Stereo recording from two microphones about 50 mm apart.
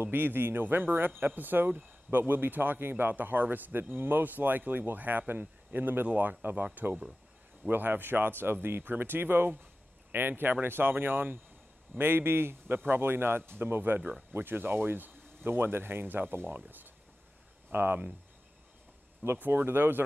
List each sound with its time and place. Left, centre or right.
0.0 s a man's voice: right
19.3 s speech: right